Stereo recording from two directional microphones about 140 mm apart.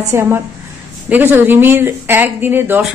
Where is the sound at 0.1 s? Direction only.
20° right (ahead or behind).